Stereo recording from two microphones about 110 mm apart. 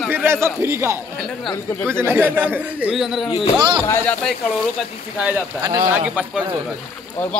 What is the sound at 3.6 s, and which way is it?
Speech, 45° right (ahead or behind).